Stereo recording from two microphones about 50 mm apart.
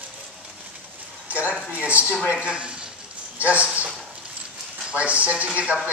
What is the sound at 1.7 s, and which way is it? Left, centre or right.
A man's voice, right.